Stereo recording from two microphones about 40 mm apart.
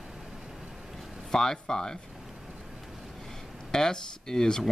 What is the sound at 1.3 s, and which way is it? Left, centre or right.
Speech, centre.